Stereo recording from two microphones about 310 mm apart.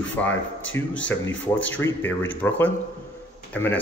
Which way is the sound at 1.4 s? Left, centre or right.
Centre.